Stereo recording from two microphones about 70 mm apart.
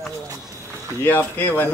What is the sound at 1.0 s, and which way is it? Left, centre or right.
Speech, left.